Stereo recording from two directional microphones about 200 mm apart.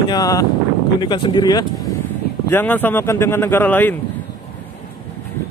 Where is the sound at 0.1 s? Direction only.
20° left (ahead or behind).